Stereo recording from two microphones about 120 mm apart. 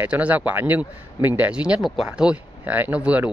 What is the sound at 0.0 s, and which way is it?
Speech, 15° right (ahead or behind).